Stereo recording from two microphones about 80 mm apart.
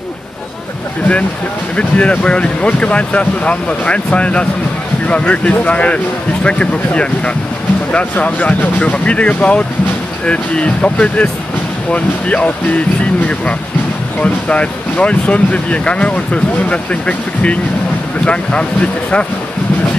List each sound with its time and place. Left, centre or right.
1.8 s speech: centre
14.2 s speech: centre